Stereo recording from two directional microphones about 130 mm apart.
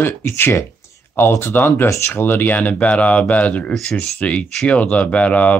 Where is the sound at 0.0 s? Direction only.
15° left (ahead or behind).